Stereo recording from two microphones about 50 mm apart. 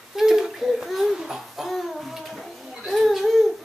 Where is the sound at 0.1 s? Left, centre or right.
Centre.